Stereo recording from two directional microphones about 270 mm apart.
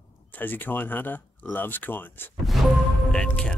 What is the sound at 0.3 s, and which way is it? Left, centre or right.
Speech, centre.